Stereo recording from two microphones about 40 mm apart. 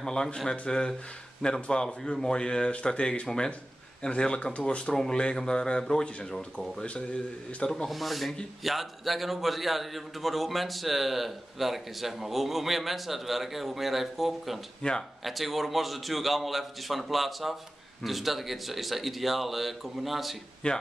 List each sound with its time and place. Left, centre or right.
0.0 s speech: centre
7.7 s a man's voice: centre
14.8 s speech: centre
15.2 s a man's voice: centre
20.6 s speech: left